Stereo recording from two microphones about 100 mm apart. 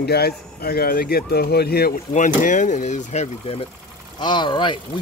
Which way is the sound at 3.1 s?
90° left.